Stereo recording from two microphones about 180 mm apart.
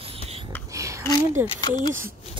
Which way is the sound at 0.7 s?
15° right (ahead or behind).